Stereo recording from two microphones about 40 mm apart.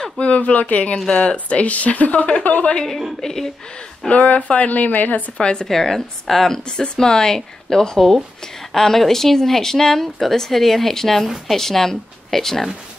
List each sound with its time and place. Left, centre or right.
0.2 s speech: left
0.9 s speech: left
3.2 s speech: centre
4.1 s speech: left
5.4 s speech: left
5.7 s speech: centre